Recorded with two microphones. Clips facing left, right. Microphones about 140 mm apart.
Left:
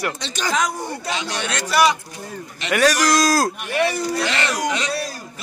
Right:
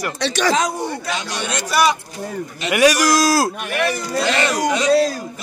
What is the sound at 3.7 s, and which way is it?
Speech, 60° right (ahead or behind).